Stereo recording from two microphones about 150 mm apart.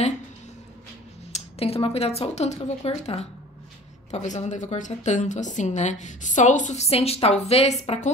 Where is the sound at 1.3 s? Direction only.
40° left (ahead or behind).